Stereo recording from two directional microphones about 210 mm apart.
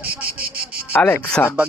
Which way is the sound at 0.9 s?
5° left (ahead or behind).